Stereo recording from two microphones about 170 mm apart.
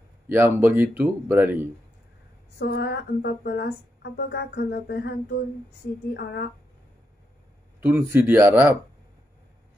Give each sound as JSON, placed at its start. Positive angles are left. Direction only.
{"t": 0.3, "sound": "speech", "side_deg": -15}
{"t": 2.6, "sound": "speech", "side_deg": 80}
{"t": 7.8, "sound": "speech", "side_deg": -15}